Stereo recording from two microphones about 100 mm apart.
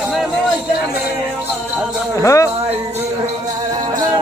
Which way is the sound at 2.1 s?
30° left (ahead or behind).